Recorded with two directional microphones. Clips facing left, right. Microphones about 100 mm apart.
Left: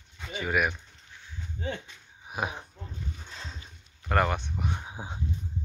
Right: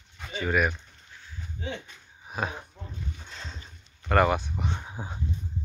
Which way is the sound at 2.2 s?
15° left (ahead or behind).